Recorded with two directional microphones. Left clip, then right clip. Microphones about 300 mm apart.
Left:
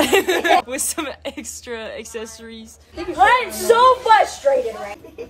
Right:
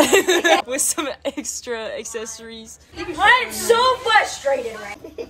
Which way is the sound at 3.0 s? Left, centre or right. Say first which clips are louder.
Left 1 dB; left.